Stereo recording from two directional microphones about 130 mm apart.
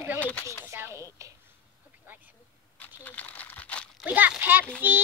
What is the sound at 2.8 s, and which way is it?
Crumpling, 10° left (ahead or behind).